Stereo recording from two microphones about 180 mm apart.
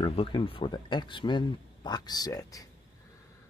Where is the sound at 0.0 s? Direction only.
30° left (ahead or behind).